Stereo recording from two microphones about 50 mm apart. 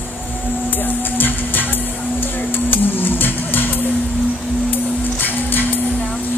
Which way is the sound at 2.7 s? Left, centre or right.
Left.